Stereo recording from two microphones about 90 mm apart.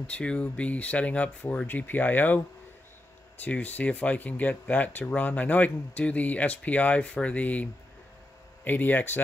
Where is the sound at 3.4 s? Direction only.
20° left (ahead or behind).